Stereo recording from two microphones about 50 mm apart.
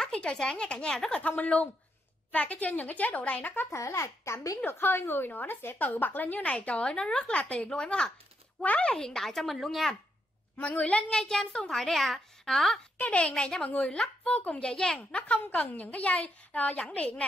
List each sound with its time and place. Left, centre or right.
0.0 s a woman's voice: left
1.2 s a woman's voice: left
3.7 s a child's voice: left
4.6 s a woman's voice: left
5.9 s a woman's voice: left
6.4 s a woman's voice: left; by 9.9 s centre
10.6 s a woman's voice: left
11.1 s speech: centre
11.8 s speech: centre
12.9 s a woman's voice: left
14.7 s a woman's voice: centre